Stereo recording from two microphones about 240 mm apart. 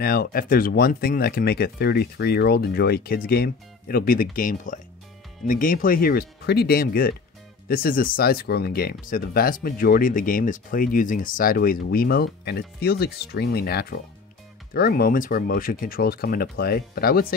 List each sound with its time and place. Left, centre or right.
0.0 s speech: left